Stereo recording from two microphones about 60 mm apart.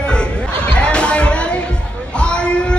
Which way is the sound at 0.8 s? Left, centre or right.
Centre.